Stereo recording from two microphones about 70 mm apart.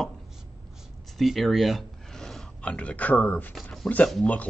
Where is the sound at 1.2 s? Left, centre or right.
Centre; by 3.5 s left.